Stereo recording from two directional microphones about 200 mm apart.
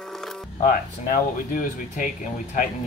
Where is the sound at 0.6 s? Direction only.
45° left (ahead or behind).